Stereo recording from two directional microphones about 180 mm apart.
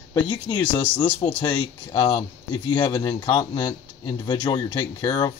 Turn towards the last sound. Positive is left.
turn(degrees=25)  # may be behind; listen again after turning